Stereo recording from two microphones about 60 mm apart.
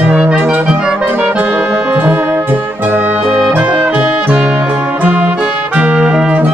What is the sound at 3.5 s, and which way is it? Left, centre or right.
Music, right.